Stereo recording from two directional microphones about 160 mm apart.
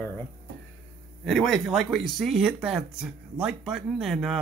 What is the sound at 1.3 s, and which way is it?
Speech, centre (ahead or behind).